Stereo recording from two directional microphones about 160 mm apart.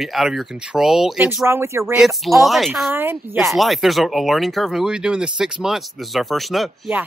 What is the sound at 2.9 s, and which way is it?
Speech, 15° right (ahead or behind).